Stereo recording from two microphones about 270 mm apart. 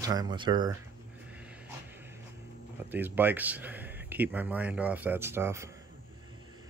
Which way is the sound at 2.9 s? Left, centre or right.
Centre.